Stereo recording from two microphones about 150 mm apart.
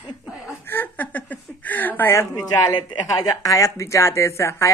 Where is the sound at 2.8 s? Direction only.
30° left (ahead or behind).